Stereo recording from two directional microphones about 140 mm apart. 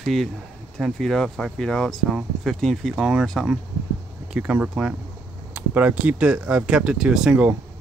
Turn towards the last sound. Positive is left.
turn(degrees=-5)  # may be behind; listen again after turning